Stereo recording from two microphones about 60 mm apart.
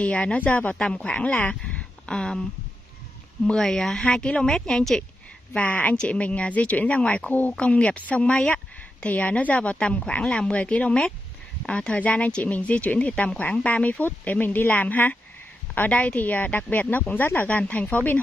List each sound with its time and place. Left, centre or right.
0.0 s speech: left
3.4 s a woman's voice: centre
5.5 s a woman's voice: left